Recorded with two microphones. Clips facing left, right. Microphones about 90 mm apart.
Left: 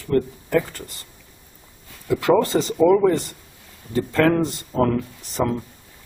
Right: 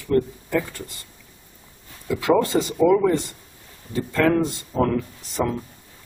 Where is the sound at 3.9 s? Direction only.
45° left (ahead or behind).